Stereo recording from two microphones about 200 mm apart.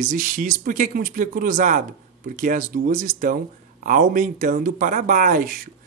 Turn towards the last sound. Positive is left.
turn(degrees=-40)  # may be behind; listen again after turning